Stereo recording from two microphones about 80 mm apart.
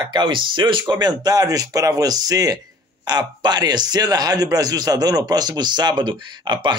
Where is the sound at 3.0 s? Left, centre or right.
Right.